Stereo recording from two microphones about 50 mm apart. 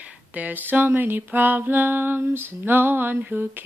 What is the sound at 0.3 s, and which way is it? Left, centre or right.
Female singing, right.